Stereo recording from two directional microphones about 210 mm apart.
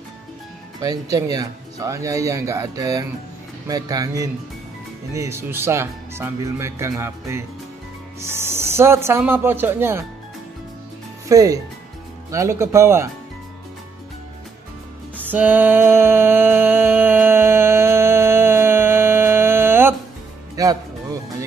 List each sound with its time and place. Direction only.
1.1 s speech: 15° right (ahead or behind)
11.2 s speech: 15° right (ahead or behind)
15.1 s music: 10° right (ahead or behind)